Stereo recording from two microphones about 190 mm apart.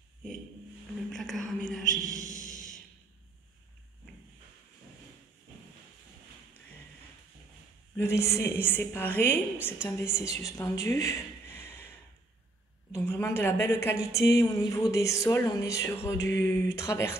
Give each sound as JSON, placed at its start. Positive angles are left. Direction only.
{"t": 1.1, "sound": "a sound", "side_deg": 0}
{"t": 8.0, "sound": "speech", "side_deg": 15}
{"t": 12.9, "sound": "speech", "side_deg": 10}